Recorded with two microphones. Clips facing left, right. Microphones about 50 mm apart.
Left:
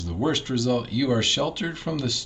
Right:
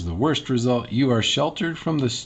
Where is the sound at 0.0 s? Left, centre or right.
Centre.